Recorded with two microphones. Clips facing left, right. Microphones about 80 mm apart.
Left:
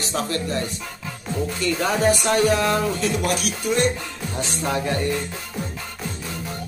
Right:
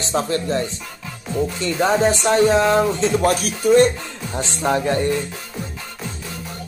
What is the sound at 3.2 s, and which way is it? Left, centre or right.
Speech, right.